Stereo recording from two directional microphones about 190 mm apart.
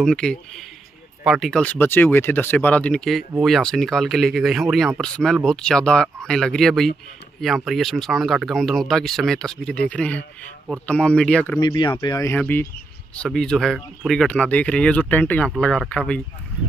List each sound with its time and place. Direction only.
0.0 s speech: 5° left (ahead or behind)
11.6 s speech: 25° left (ahead or behind); by 16.2 s 5° left (ahead or behind)